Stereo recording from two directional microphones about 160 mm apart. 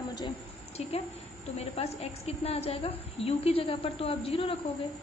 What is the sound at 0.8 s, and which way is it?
A woman's voice, 40° left (ahead or behind).